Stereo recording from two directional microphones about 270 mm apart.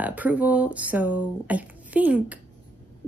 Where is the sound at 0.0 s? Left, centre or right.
Centre.